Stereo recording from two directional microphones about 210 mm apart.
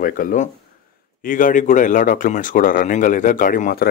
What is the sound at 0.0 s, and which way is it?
Speech, 40° left (ahead or behind).